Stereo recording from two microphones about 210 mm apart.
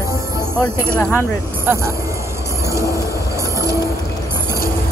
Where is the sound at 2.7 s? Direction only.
15° right (ahead or behind).